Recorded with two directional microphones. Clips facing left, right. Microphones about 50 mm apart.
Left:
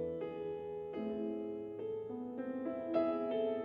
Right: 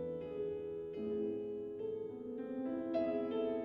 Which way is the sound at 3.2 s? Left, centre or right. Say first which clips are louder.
Left 1 dB; centre.